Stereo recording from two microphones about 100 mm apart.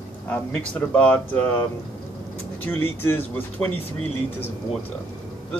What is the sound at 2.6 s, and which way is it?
Speech, 25° left (ahead or behind).